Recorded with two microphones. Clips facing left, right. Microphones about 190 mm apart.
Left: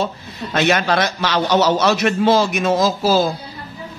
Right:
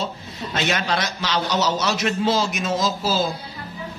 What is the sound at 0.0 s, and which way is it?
A man's voice, 60° left (ahead or behind).